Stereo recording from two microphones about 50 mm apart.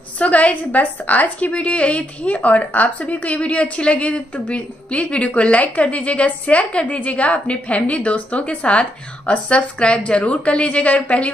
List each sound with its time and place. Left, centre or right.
0.2 s a woman's voice: left